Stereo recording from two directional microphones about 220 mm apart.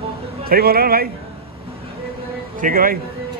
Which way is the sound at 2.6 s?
40° right (ahead or behind).